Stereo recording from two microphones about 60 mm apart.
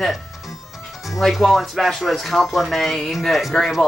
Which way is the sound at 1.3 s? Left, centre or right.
Centre.